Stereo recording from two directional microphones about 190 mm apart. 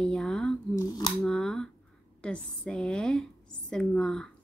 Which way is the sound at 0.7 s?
15° left (ahead or behind).